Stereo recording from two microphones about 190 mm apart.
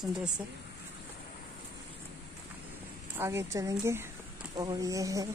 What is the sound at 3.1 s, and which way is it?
Speech, 15° right (ahead or behind).